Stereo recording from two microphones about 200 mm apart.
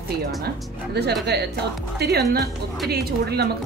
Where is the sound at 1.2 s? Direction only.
55° right (ahead or behind).